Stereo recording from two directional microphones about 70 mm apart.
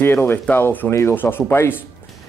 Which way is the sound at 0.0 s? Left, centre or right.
Left.